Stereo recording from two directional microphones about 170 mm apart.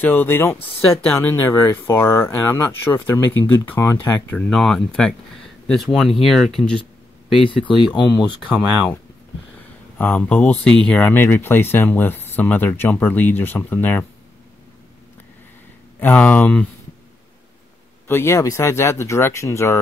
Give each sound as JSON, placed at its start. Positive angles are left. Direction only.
{"t": 0.0, "sound": "speech", "side_deg": 10}
{"t": 4.4, "sound": "speech", "side_deg": 5}
{"t": 7.3, "sound": "speech", "side_deg": 30}
{"t": 9.9, "sound": "speech", "side_deg": 10}
{"t": 16.0, "sound": "speech", "side_deg": 10}
{"t": 18.0, "sound": "speech", "side_deg": 15}